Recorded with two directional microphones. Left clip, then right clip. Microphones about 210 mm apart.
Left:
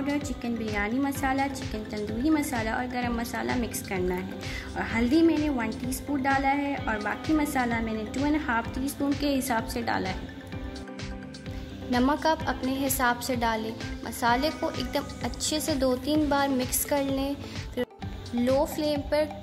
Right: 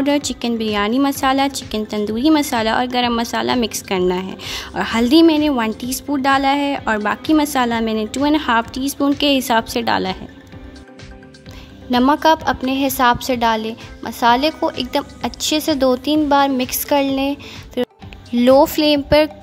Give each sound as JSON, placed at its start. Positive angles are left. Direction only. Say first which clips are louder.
{"t": 0.0, "sound": "a woman's voice", "louder": "right 12 dB", "side_deg": -45}
{"t": 11.9, "sound": "a woman's voice", "louder": "right 11 dB", "side_deg": -30}